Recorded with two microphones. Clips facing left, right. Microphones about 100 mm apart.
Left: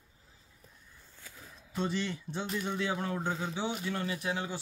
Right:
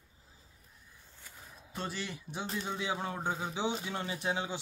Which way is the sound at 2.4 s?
30° right (ahead or behind).